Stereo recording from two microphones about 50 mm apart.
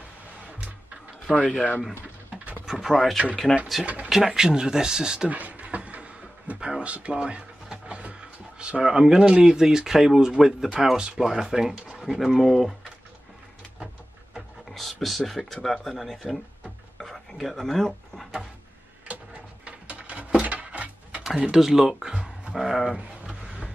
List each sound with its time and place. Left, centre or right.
1.3 s speech: centre
2.6 s speech: centre
3.8 s speech: right
4.3 s speech: centre
5.3 s a sound: right
8.8 s speech: centre
14.7 s speech: centre
17.0 s a sound: centre
19.6 s a sound: right
21.4 s speech: centre
22.5 s speech: centre
23.2 s a sound: centre